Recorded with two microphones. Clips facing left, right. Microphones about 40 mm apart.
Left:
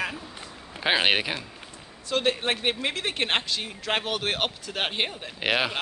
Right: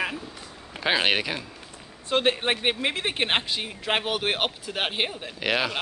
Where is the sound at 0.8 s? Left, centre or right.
Centre.